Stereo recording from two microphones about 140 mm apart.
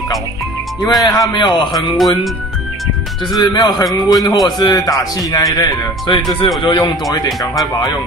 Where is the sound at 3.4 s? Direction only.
30° left (ahead or behind).